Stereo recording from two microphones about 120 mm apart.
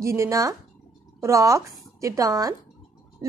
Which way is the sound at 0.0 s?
25° right (ahead or behind).